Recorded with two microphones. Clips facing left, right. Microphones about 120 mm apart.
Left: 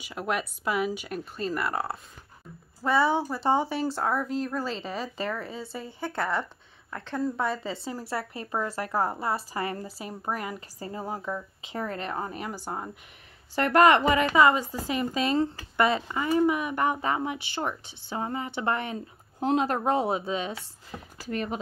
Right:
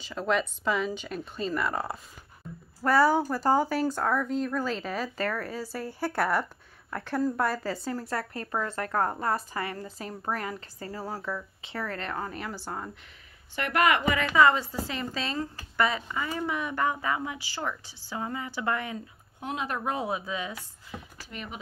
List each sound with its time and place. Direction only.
0.0 s a woman's voice: 10° left (ahead or behind)
9.5 s speech: 25° left (ahead or behind)
9.8 s speech: 10° left (ahead or behind)
13.6 s a woman's voice: 35° left (ahead or behind)
14.3 s speech: 15° left (ahead or behind)
19.4 s speech: 35° left (ahead or behind)
21.3 s a woman's voice: 40° left (ahead or behind)